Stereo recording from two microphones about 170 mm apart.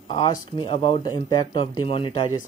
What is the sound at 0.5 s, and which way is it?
Speech, 30° left (ahead or behind).